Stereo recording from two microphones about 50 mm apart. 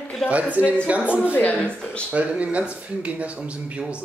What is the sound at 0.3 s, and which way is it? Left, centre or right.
Speech, right.